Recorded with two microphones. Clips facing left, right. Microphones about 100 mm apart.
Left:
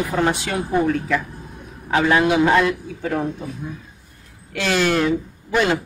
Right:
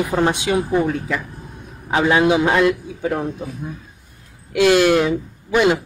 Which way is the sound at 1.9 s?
20° right (ahead or behind).